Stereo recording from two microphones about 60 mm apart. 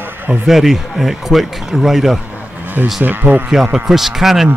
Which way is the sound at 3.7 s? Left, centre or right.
Centre.